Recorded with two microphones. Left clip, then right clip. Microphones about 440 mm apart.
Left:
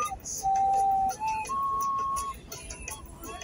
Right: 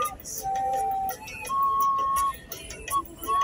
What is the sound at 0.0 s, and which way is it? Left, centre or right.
Music, right.